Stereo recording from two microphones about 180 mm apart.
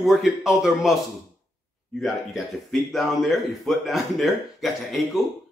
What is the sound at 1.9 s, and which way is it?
A man's voice, centre (ahead or behind).